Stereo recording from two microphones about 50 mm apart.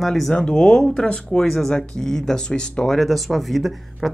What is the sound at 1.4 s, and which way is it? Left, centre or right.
Speech, centre.